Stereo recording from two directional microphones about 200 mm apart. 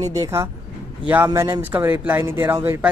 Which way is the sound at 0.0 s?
15° right (ahead or behind).